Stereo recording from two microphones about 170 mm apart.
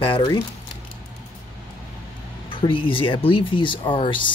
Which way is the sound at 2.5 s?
30° left (ahead or behind).